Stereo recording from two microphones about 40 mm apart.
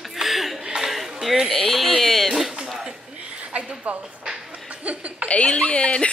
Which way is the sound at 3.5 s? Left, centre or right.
Right.